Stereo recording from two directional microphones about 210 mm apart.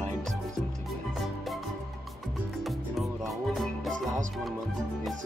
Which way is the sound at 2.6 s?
Centre (ahead or behind).